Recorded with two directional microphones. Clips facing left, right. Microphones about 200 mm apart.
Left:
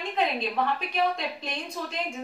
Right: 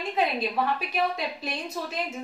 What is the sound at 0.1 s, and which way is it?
A woman's voice, 5° right (ahead or behind).